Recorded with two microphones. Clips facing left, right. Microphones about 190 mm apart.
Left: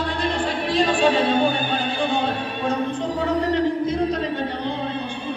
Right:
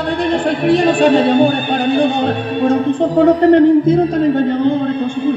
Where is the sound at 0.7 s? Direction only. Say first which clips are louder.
Right 8 dB; 65° right (ahead or behind).